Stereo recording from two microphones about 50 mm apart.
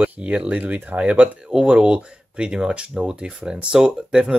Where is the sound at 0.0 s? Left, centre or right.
Right.